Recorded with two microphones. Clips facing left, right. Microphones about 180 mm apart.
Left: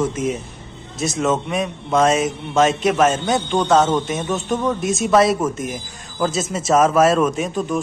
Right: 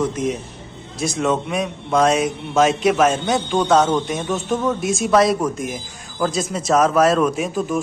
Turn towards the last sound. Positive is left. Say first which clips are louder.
# even
turn(degrees=0)  # may be behind; listen again after turning